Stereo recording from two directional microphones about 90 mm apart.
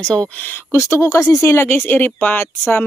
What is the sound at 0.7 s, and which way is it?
Speech, 35° left (ahead or behind).